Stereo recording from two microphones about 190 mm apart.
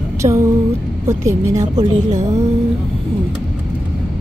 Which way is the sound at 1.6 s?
35° right (ahead or behind).